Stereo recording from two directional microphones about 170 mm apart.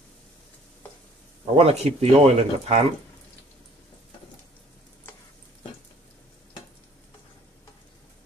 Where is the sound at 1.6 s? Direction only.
35° right (ahead or behind).